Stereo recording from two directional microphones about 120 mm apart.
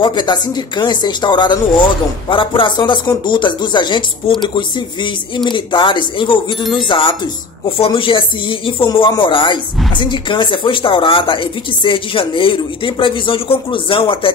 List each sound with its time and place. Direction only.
0.0 s speech: 40° left (ahead or behind)